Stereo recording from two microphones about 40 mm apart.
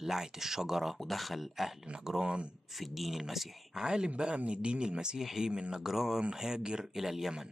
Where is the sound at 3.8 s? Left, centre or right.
Centre.